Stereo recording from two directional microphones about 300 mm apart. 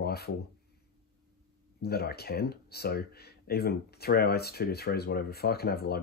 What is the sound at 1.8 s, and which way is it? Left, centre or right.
Speech, left.